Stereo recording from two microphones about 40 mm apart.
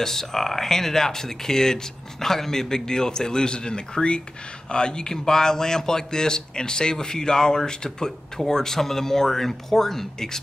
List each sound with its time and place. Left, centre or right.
0.0 s speech: centre